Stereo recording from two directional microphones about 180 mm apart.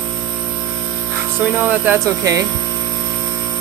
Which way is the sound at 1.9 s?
20° right (ahead or behind).